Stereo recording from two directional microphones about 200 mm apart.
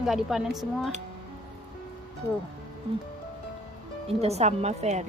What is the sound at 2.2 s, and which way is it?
Speech, 10° left (ahead or behind).